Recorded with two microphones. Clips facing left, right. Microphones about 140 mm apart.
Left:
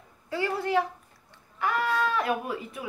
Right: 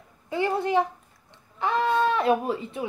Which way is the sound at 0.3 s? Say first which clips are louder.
Right 3 dB; 20° right (ahead or behind).